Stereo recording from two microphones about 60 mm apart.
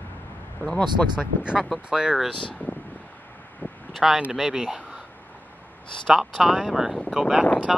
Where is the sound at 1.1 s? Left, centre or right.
Centre.